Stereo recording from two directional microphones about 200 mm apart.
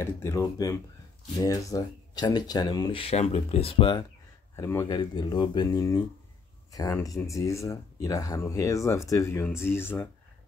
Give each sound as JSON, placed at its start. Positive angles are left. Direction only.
{"t": 0.0, "sound": "speech", "side_deg": 15}
{"t": 4.6, "sound": "speech", "side_deg": 15}